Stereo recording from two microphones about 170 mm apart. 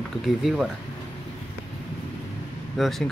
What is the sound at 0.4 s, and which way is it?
Speech, centre (ahead or behind).